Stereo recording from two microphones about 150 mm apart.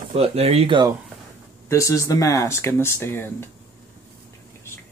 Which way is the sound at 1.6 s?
20° left (ahead or behind).